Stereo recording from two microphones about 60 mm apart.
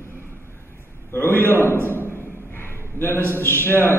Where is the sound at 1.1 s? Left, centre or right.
Left.